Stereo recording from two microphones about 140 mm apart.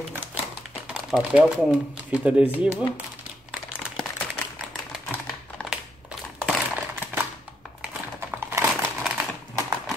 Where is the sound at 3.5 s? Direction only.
5° right (ahead or behind).